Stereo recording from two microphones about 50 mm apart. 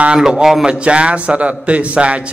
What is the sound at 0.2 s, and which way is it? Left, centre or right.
Speech, centre.